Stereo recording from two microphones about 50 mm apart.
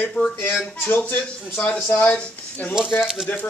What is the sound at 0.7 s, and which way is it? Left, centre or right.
Speech, left.